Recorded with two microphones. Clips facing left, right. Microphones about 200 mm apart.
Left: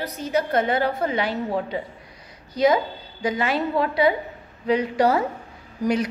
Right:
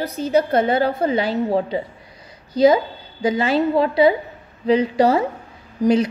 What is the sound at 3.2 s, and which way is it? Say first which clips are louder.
A woman's voice: right 5 dB; 30° right (ahead or behind).